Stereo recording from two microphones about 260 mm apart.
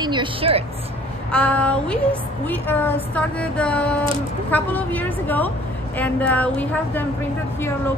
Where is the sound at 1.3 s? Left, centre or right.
Centre.